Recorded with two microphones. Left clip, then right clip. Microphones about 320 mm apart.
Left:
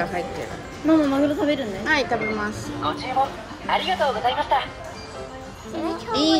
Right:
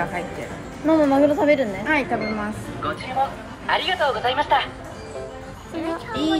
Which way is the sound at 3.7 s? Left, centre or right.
Centre.